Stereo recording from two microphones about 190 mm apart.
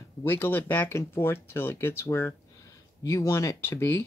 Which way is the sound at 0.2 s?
10° left (ahead or behind).